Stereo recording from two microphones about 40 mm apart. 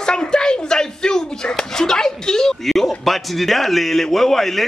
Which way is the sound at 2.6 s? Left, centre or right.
Centre.